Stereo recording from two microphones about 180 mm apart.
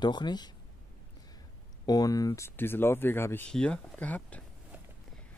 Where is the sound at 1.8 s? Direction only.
20° left (ahead or behind).